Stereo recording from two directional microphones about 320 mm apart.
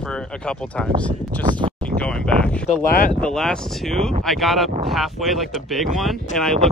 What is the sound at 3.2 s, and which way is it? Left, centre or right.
Speech, centre.